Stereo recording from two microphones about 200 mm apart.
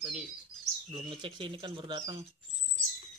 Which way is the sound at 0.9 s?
25° right (ahead or behind).